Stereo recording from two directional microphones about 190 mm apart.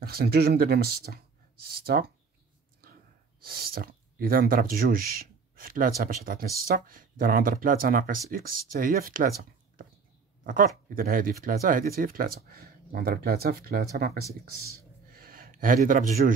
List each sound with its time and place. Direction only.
0.0 s speech: 55° right (ahead or behind)
3.4 s speech: 50° right (ahead or behind)